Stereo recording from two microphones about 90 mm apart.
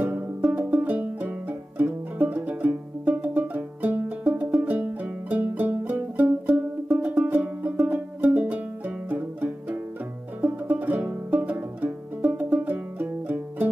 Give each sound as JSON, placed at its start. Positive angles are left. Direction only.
{"t": 0.5, "sound": "music", "side_deg": -20}